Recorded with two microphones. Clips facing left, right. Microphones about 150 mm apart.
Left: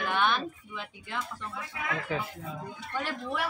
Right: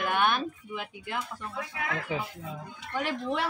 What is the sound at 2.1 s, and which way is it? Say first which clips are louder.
Speech: even; 15° right (ahead or behind).